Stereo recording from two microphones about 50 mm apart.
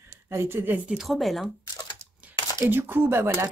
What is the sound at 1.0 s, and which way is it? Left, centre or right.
Speech, centre.